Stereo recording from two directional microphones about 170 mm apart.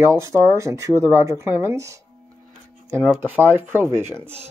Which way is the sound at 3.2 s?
10° right (ahead or behind).